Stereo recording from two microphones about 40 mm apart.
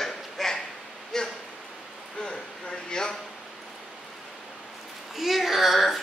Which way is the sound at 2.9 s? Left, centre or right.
Centre.